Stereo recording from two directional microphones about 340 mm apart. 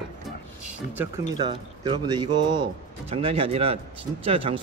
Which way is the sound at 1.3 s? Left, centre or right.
Centre.